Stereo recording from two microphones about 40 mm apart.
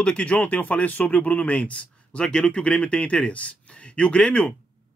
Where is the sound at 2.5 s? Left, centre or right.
Left.